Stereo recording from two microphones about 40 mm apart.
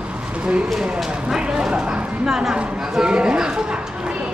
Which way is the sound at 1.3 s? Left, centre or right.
Centre.